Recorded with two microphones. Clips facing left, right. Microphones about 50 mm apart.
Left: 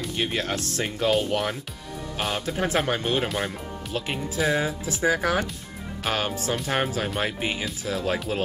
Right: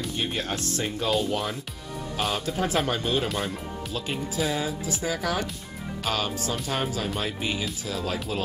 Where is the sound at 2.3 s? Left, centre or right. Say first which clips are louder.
Left 2 dB; left.